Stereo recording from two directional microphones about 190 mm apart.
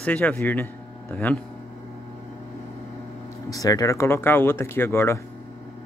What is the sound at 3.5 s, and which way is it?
Speech, 20° left (ahead or behind).